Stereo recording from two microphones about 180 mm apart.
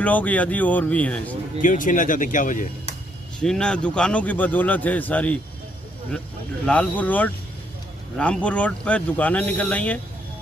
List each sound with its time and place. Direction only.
0.0 s a man's voice: 10° left (ahead or behind)
1.6 s speech: 50° left (ahead or behind)
3.3 s a man's voice: 5° left (ahead or behind)